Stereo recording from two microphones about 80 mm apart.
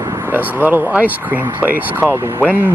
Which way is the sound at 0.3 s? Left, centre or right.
Right.